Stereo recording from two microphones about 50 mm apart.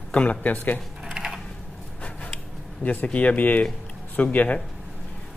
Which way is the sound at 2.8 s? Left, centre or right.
Left.